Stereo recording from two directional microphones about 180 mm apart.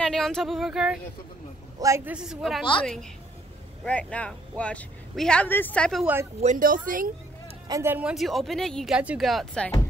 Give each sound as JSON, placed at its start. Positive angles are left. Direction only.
{"t": 0.0, "sound": "speech", "side_deg": 5}
{"t": 1.8, "sound": "a woman's voice", "side_deg": -15}
{"t": 6.4, "sound": "speech", "side_deg": -45}
{"t": 7.6, "sound": "speech", "side_deg": -15}